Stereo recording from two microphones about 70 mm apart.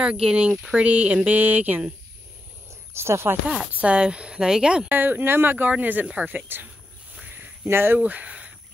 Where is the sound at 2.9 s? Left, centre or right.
Right.